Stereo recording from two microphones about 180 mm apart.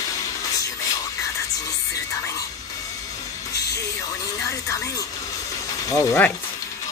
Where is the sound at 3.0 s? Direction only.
20° left (ahead or behind).